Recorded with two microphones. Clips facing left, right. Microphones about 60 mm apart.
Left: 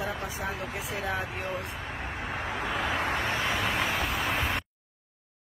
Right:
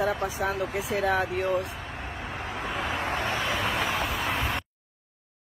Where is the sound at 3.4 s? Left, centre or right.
Centre.